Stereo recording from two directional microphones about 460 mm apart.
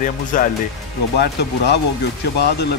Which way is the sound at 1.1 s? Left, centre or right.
Left.